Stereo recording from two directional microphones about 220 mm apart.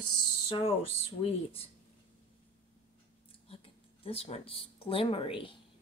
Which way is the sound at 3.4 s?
25° left (ahead or behind).